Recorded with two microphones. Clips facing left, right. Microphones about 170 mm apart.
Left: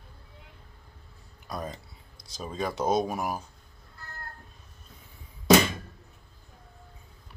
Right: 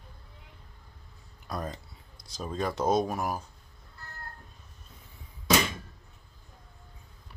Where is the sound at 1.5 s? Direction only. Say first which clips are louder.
Even; 5° left (ahead or behind).